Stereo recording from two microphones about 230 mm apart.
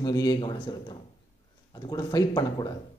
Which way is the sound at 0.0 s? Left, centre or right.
Centre.